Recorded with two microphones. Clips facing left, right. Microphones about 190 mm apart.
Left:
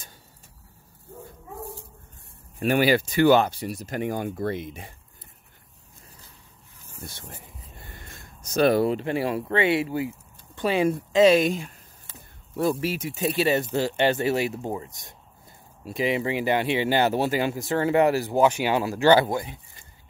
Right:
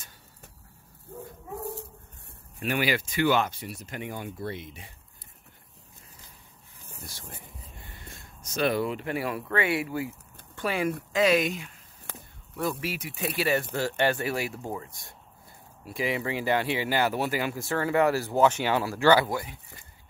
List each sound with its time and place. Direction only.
2.6 s speech: 35° left (ahead or behind)
8.5 s speech: 40° left (ahead or behind); by 19.5 s 25° left (ahead or behind)